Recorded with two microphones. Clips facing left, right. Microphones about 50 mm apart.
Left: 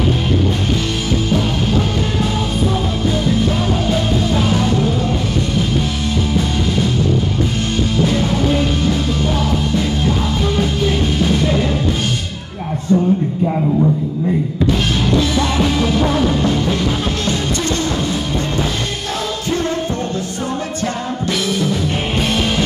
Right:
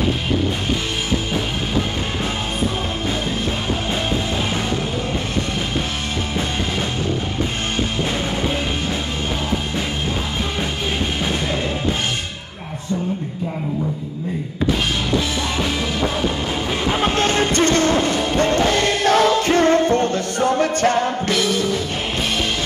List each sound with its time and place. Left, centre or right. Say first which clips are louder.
16.7 s music: even; right